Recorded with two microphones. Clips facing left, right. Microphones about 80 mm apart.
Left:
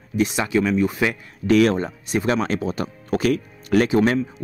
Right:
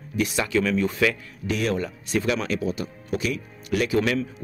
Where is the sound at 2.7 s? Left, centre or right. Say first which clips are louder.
Left 5 dB; left.